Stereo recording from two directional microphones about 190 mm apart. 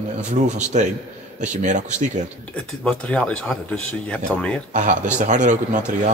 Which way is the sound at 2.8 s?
5° left (ahead or behind).